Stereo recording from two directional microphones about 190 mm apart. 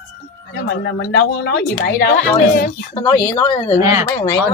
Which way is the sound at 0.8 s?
70° left (ahead or behind).